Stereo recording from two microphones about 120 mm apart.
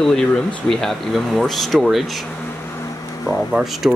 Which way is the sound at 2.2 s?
25° left (ahead or behind).